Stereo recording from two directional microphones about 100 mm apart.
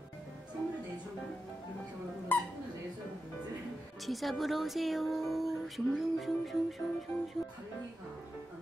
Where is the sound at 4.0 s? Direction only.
Centre (ahead or behind).